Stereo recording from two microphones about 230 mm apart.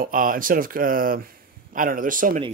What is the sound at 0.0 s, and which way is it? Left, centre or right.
Speech, right.